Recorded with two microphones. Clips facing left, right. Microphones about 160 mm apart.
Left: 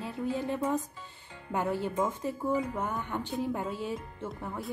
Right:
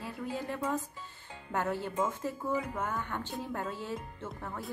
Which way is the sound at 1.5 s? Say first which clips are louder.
Left 3 dB; 15° left (ahead or behind).